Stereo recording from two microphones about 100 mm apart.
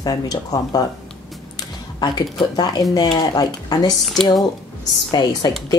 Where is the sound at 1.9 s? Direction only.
45° left (ahead or behind).